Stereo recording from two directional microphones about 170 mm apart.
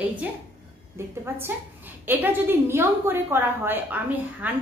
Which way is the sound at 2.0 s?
15° right (ahead or behind).